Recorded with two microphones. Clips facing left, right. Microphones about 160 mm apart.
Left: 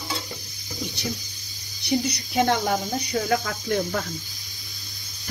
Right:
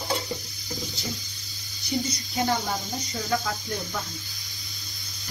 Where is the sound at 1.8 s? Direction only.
75° left (ahead or behind).